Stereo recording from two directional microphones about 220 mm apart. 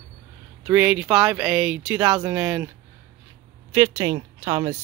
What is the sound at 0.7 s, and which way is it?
Speech, 5° right (ahead or behind).